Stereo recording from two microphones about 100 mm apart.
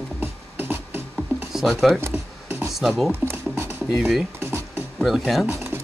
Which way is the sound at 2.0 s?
25° right (ahead or behind).